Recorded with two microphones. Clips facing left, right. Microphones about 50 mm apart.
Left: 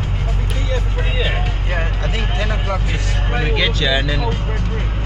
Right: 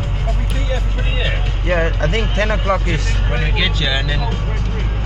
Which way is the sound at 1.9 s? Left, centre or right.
Right.